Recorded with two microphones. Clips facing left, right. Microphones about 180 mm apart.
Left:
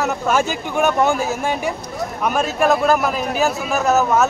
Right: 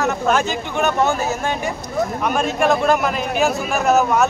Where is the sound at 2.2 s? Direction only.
5° left (ahead or behind).